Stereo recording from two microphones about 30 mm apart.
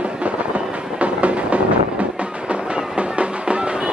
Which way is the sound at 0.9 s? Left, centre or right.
Right.